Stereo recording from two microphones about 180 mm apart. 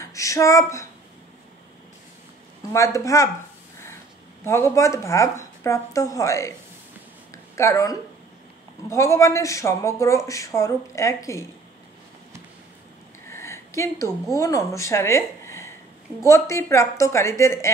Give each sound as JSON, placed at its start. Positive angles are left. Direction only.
{"t": 0.0, "sound": "speech", "side_deg": 15}
{"t": 2.7, "sound": "speech", "side_deg": 15}
{"t": 4.5, "sound": "speech", "side_deg": 15}
{"t": 7.5, "sound": "speech", "side_deg": 15}
{"t": 13.3, "sound": "a sound", "side_deg": 15}
{"t": 14.3, "sound": "a woman's voice", "side_deg": 15}